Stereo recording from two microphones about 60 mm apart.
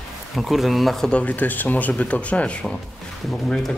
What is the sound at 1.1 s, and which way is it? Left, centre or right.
Speech, left.